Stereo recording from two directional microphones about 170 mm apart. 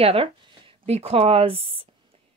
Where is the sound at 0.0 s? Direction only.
35° right (ahead or behind).